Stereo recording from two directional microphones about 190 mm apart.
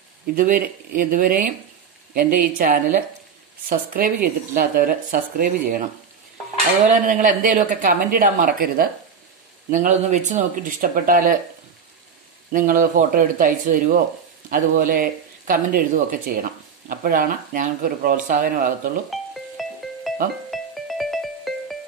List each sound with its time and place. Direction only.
0.3 s speech: 50° right (ahead or behind)
6.9 s speech: 40° right (ahead or behind)
12.5 s speech: 45° right (ahead or behind)
19.0 s music: centre (ahead or behind)